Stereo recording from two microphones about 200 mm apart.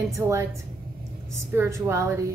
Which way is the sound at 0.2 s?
15° right (ahead or behind).